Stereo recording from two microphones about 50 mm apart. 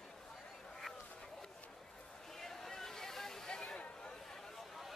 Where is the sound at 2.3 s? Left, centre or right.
Centre.